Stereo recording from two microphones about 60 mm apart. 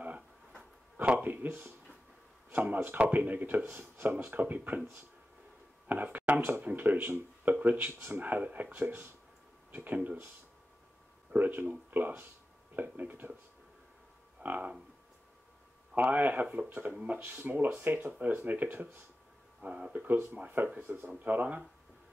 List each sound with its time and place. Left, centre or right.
0.6 s a sound: right
1.2 s speech: right
5.9 s speech: right
11.3 s speech: right
14.4 s speech: right
15.9 s speech: right
19.6 s speech: centre
20.1 s speech: right